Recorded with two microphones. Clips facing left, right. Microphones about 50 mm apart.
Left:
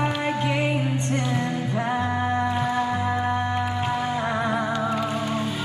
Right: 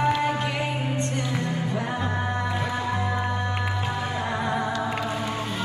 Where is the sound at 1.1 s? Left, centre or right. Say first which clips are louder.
Left 3 dB; left.